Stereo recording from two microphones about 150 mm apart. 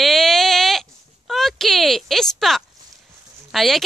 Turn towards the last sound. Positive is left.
turn(degrees=0)  # may be behind; listen again after turning